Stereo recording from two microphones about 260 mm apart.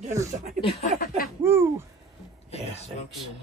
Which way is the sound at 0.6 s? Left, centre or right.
Left.